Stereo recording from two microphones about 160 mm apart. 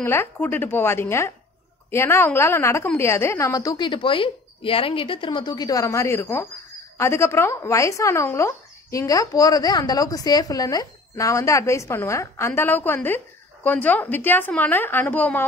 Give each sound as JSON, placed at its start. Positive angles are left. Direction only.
{"t": 0.0, "sound": "a woman's voice", "side_deg": 15}